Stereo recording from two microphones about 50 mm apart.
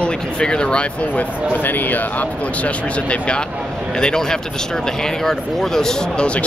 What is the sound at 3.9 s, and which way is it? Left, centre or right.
Speech, centre.